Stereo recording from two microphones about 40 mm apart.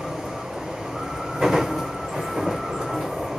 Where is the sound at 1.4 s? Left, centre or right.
Centre.